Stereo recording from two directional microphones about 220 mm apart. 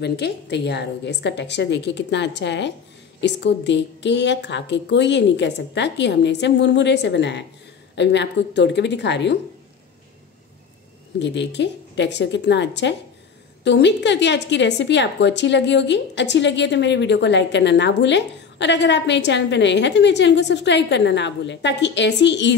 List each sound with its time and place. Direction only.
0.0 s a woman's voice: 50° left (ahead or behind)
11.1 s a woman's voice: 50° left (ahead or behind)